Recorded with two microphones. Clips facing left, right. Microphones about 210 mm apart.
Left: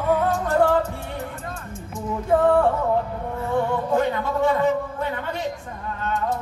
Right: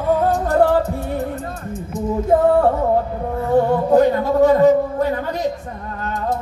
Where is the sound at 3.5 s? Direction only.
40° right (ahead or behind).